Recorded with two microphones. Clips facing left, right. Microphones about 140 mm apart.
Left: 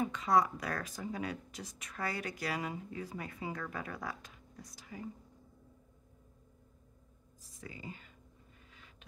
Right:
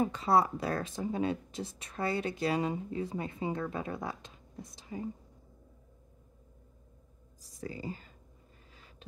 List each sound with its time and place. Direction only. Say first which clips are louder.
0.0 s speech: right 3 dB; 35° right (ahead or behind)
7.4 s speech: right 8 dB; 35° right (ahead or behind)